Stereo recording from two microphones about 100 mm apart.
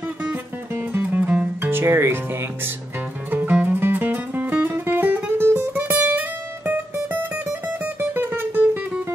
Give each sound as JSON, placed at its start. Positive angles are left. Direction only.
{"t": 0.2, "sound": "music", "side_deg": -20}
{"t": 3.3, "sound": "music", "side_deg": -15}